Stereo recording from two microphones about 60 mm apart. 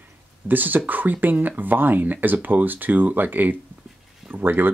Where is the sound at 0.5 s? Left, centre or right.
Right.